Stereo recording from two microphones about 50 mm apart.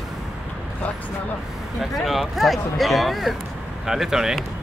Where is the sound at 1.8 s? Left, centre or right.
Centre.